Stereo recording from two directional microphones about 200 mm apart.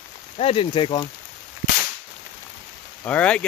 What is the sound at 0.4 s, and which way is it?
Speech, 30° left (ahead or behind).